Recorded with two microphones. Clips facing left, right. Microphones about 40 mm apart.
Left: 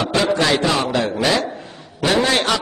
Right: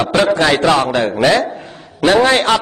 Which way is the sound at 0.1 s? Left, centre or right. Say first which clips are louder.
Right 4 dB; right.